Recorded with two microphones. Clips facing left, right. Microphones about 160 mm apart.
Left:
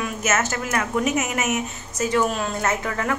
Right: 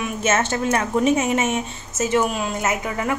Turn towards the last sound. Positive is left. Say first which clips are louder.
# right 1 dB
turn(degrees=-15)  # may be behind; listen again after turning